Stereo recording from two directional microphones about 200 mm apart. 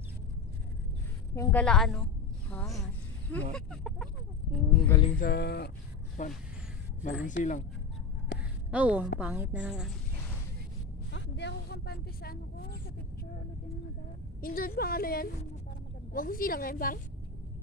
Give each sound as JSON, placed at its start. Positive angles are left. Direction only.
{"t": 1.3, "sound": "a woman's voice", "side_deg": 10}
{"t": 2.5, "sound": "cricket", "side_deg": 0}
{"t": 3.5, "sound": "chicken", "side_deg": 5}
{"t": 5.2, "sound": "a woman's voice", "side_deg": 55}
{"t": 6.2, "sound": "speech", "side_deg": 40}
{"t": 8.6, "sound": "a woman's voice", "side_deg": -5}
{"t": 11.1, "sound": "speech", "side_deg": 60}
{"t": 14.4, "sound": "a woman's voice", "side_deg": 45}